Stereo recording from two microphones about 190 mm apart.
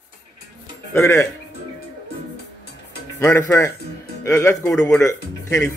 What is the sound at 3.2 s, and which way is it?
Speech, 15° left (ahead or behind).